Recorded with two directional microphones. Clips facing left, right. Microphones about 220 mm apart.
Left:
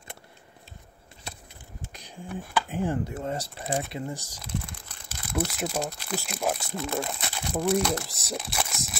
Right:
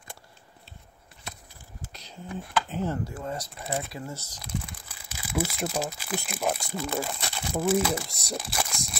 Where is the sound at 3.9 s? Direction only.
20° left (ahead or behind).